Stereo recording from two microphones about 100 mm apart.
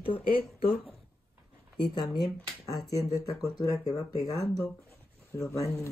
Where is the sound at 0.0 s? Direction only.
65° left (ahead or behind).